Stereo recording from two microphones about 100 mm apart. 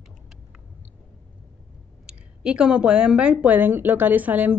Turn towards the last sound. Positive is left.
turn(degrees=-15)  # may be behind; listen again after turning